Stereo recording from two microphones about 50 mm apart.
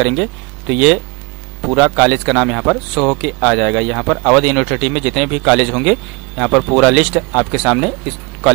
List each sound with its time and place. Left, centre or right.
0.0 s a man's voice: centre